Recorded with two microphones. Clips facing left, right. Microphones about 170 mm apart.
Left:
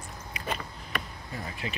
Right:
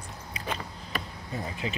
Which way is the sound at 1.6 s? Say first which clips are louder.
Right 3 dB; 20° right (ahead or behind).